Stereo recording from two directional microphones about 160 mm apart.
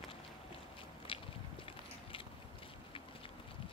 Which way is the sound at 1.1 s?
35° left (ahead or behind).